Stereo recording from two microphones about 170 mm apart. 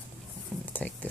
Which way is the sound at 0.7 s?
10° left (ahead or behind).